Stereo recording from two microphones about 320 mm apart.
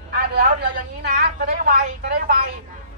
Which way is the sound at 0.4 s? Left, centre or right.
Right.